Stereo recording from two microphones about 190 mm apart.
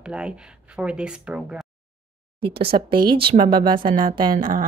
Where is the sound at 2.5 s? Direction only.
30° right (ahead or behind).